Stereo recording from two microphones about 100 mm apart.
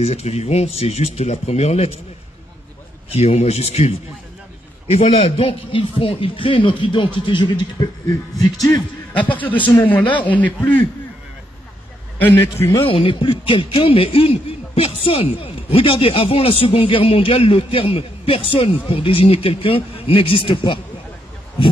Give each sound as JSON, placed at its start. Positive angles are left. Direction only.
{"t": 0.0, "sound": "speech", "side_deg": 90}
{"t": 3.1, "sound": "a man's voice", "side_deg": 90}
{"t": 8.1, "sound": "music", "side_deg": 35}
{"t": 9.4, "sound": "a man's voice", "side_deg": 15}
{"t": 12.2, "sound": "a man's voice", "side_deg": 20}
{"t": 12.8, "sound": "a man's voice", "side_deg": 65}